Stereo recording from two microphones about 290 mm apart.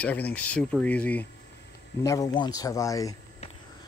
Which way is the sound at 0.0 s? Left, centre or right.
Centre.